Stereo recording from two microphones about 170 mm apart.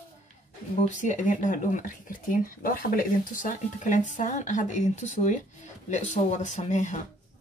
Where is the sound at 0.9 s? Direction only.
45° left (ahead or behind).